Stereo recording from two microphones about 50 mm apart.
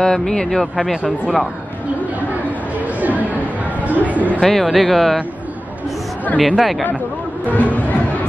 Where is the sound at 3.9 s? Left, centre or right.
Right.